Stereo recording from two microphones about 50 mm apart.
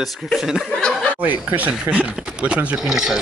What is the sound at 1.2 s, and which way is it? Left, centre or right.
Speech, right.